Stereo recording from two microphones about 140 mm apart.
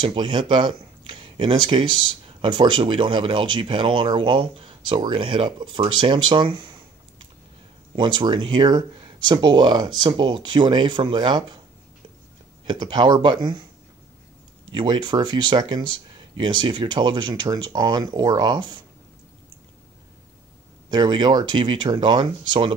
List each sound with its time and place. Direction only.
0.0 s speech: 35° right (ahead or behind)
12.6 s speech: 35° right (ahead or behind)
14.7 s speech: 35° right (ahead or behind)
20.9 s speech: 30° right (ahead or behind)